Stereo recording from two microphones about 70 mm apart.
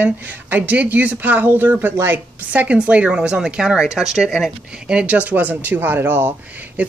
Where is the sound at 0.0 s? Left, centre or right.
Right.